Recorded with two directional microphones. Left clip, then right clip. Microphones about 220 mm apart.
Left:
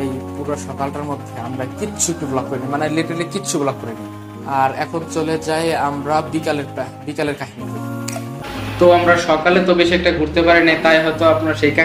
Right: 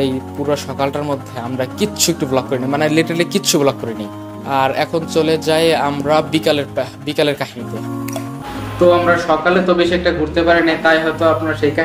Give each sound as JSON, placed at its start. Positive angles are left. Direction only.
{"t": 0.5, "sound": "speech", "side_deg": -45}
{"t": 2.3, "sound": "speech", "side_deg": -40}
{"t": 8.7, "sound": "speech", "side_deg": -5}